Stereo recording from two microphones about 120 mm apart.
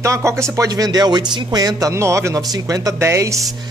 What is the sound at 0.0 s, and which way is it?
Speech, 25° right (ahead or behind).